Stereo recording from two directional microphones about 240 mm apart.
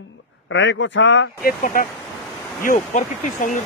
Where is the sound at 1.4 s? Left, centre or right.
Left.